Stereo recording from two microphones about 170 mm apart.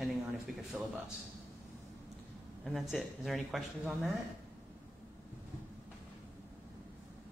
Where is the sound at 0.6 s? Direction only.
5° right (ahead or behind).